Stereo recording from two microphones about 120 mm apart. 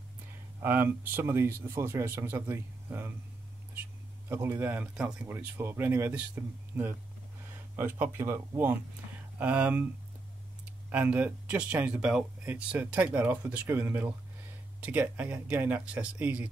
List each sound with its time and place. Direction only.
0.6 s speech: 20° right (ahead or behind)
4.3 s speech: 20° right (ahead or behind)
10.9 s speech: 10° right (ahead or behind)